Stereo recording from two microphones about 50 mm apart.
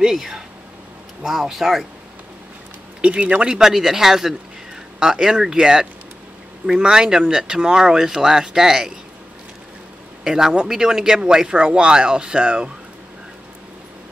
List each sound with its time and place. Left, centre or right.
0.0 s speech: centre
3.0 s speech: right
10.2 s speech: centre